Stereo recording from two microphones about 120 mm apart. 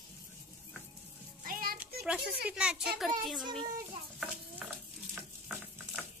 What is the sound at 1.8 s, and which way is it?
A child's voice, 10° right (ahead or behind).